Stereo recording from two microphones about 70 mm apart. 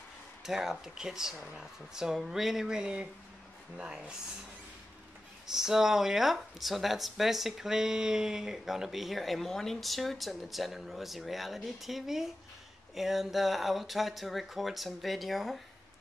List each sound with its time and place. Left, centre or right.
0.4 s speech: centre
5.5 s speech: centre